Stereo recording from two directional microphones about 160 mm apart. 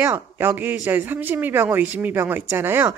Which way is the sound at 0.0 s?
15° right (ahead or behind).